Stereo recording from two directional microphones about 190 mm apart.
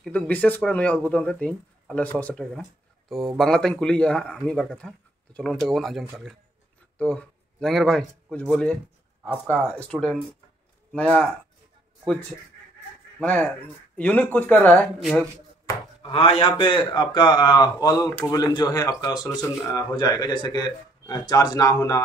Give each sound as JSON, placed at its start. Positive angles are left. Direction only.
{"t": 0.0, "sound": "speech", "side_deg": 5}
{"t": 13.2, "sound": "speech", "side_deg": 5}
{"t": 16.0, "sound": "speech", "side_deg": 30}